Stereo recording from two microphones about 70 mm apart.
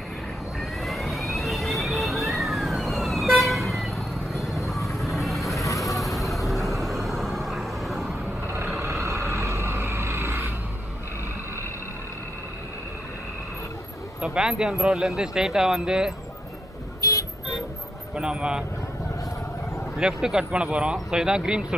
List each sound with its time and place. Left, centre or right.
0.6 s vehicle: centre
8.5 s vehicle: right
14.2 s speech: centre
17.0 s vehicle: left
18.1 s speech: centre
20.0 s speech: centre